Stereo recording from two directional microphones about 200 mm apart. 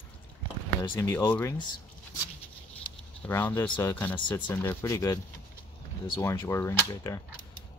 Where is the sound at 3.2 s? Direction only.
10° left (ahead or behind).